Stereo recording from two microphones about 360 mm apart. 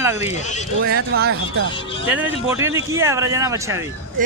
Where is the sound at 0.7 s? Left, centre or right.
Right.